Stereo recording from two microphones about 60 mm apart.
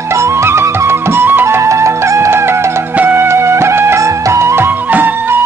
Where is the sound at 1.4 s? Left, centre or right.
Right.